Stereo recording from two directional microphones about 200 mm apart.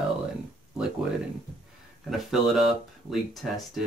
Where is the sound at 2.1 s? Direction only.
Centre (ahead or behind).